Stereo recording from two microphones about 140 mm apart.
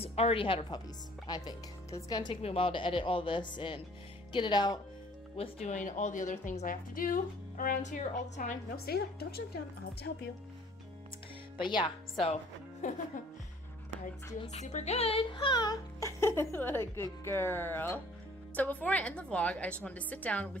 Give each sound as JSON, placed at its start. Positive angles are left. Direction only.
{"t": 0.0, "sound": "a woman's voice", "side_deg": 45}
{"t": 2.4, "sound": "speech", "side_deg": 40}
{"t": 5.4, "sound": "a woman's voice", "side_deg": 50}
{"t": 11.5, "sound": "speech", "side_deg": 35}
{"t": 12.8, "sound": "a woman's voice", "side_deg": 60}
{"t": 14.4, "sound": "a woman's voice", "side_deg": 55}